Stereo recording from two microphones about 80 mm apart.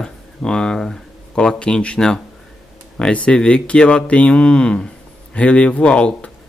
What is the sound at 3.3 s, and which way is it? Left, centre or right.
Speech, centre.